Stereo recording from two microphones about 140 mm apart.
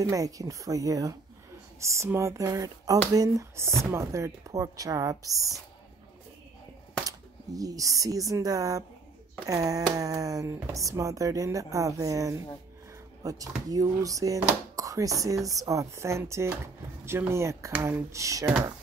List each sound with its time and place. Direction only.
0.0 s speech: 25° right (ahead or behind)
7.1 s speech: 25° right (ahead or behind)